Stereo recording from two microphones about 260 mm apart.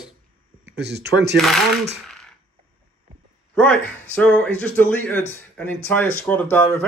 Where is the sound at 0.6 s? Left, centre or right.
Right.